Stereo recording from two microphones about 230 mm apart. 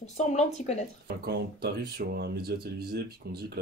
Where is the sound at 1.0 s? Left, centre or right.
Right.